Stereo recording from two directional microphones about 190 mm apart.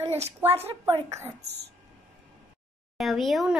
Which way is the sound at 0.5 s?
30° right (ahead or behind).